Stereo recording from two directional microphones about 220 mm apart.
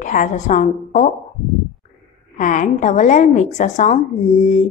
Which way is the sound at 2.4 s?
35° left (ahead or behind).